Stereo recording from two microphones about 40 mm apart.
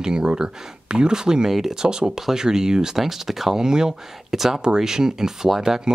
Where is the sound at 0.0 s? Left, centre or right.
Right.